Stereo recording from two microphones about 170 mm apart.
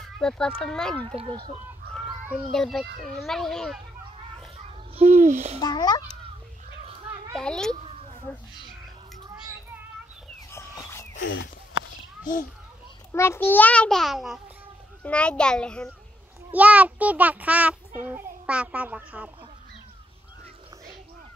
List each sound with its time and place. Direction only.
0.0 s speech: 5° left (ahead or behind)
1.0 s speech: 30° right (ahead or behind)
2.5 s speech: centre (ahead or behind)
4.6 s a child's voice: 35° right (ahead or behind)
5.6 s a child's voice: 25° left (ahead or behind)
7.3 s speech: 5° left (ahead or behind)
7.7 s a sound: 40° right (ahead or behind)
10.5 s chicken: 20° left (ahead or behind)
11.1 s speech: 90° left
13.1 s a child's voice: 15° left (ahead or behind)
16.5 s a child's voice: 10° right (ahead or behind)